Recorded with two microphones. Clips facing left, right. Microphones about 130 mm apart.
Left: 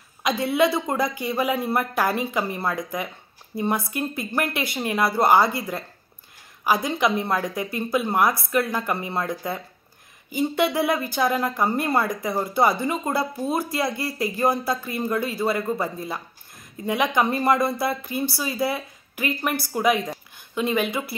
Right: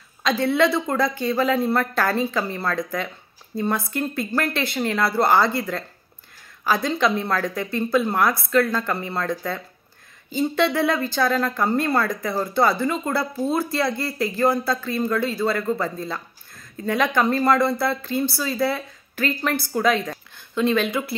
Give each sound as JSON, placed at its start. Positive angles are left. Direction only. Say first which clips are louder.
{"t": 0.2, "sound": "speech", "louder": "right 1 dB", "side_deg": 15}